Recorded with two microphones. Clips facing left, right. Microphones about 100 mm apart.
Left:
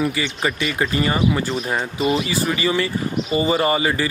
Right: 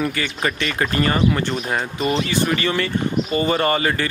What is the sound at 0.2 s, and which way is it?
Speech, 10° left (ahead or behind).